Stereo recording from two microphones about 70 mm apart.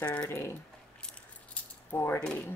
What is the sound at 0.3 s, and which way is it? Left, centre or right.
Speech, left.